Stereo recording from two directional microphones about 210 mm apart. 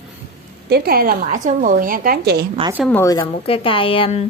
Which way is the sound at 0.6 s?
45° right (ahead or behind).